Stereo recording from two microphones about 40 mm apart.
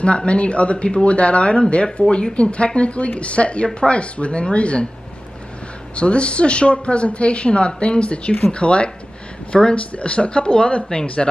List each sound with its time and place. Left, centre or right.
0.0 s a woman's voice: left
5.9 s a woman's voice: left